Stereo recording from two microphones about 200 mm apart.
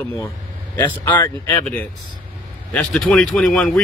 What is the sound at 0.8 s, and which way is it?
Speech, 20° left (ahead or behind).